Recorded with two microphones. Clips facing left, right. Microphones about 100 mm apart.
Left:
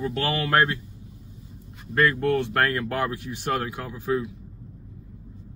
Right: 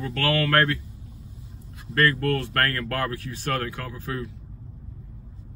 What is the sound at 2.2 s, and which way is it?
Speech, 25° left (ahead or behind).